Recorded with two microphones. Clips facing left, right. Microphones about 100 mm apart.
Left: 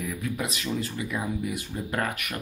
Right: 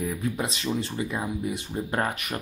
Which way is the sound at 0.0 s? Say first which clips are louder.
Right 3 dB; 30° right (ahead or behind).